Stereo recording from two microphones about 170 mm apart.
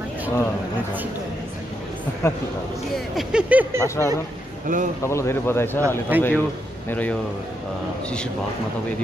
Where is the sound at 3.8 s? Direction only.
15° left (ahead or behind).